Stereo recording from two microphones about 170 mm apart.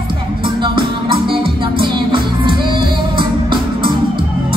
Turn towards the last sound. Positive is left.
turn(degrees=-30)  # may be behind; listen again after turning